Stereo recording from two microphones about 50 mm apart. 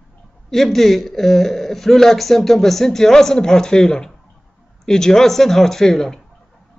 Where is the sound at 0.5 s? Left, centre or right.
Centre.